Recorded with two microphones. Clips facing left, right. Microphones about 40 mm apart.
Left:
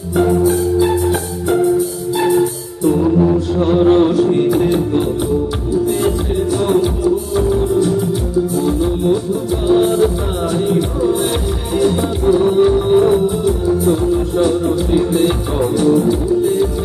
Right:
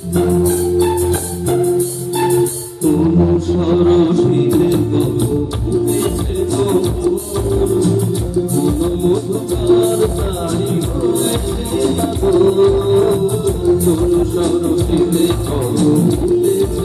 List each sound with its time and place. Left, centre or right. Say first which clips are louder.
2.1 s music: even; centre
3.6 s music: left 1 dB; centre
6.5 s music: even; centre
11.8 s music: left 1 dB; centre
15.2 s music: left 1 dB; centre